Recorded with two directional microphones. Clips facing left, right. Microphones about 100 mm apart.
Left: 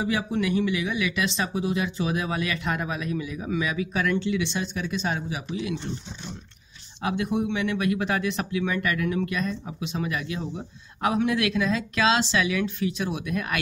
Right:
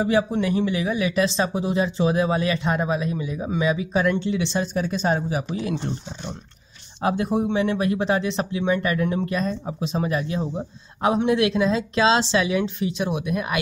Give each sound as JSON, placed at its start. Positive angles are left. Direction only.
{"t": 0.0, "sound": "speech", "side_deg": -30}
{"t": 7.0, "sound": "speech", "side_deg": -35}